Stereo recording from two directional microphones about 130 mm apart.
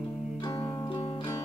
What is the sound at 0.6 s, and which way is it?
Music, 40° left (ahead or behind).